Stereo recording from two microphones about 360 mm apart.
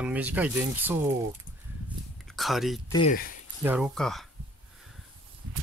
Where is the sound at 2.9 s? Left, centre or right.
Left.